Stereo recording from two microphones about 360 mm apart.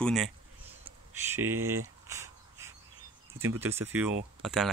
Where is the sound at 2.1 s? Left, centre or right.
Centre.